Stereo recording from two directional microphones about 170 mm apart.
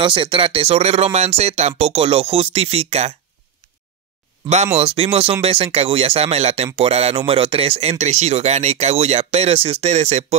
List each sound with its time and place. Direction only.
0.0 s speech: 30° right (ahead or behind)
4.7 s speech: 35° right (ahead or behind)